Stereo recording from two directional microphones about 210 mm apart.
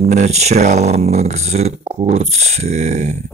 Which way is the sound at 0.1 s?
30° right (ahead or behind).